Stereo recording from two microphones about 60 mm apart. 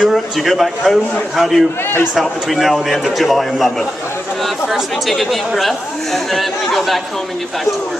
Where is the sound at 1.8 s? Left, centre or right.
Left.